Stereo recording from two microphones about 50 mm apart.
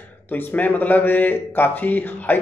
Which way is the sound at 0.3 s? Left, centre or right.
Left.